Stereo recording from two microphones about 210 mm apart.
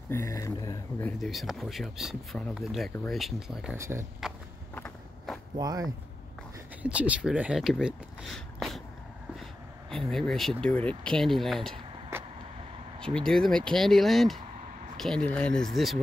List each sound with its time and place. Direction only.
0.1 s speech: 15° left (ahead or behind)
1.2 s speech: centre (ahead or behind)
3.2 s speech: centre (ahead or behind)
3.7 s speech: 15° right (ahead or behind)
4.2 s speech: centre (ahead or behind)
4.7 s a sound: 5° left (ahead or behind)
5.6 s speech: 20° right (ahead or behind)
6.8 s speech: 5° right (ahead or behind)
13.0 s speech: 5° left (ahead or behind)